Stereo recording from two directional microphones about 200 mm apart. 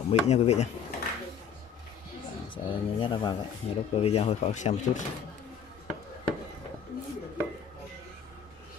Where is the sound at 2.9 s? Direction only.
25° left (ahead or behind).